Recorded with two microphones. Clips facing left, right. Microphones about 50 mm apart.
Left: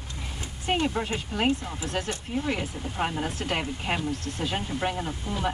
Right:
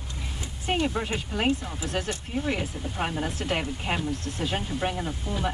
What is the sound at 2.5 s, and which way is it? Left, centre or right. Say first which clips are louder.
Speech: right 1 dB; centre.